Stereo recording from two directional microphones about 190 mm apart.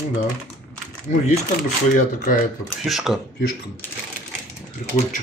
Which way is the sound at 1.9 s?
45° left (ahead or behind).